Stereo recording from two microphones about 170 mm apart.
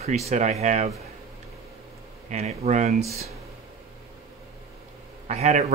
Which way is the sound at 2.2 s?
40° right (ahead or behind).